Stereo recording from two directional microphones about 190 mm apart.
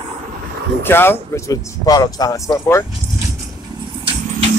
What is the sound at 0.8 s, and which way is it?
Speech, 10° left (ahead or behind).